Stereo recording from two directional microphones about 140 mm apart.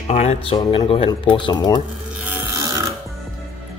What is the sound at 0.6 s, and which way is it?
Speech, 30° left (ahead or behind).